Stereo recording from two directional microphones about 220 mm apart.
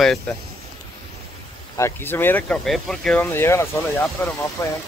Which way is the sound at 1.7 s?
10° left (ahead or behind).